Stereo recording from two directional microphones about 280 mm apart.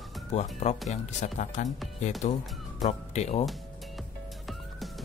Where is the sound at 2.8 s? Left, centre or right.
Left.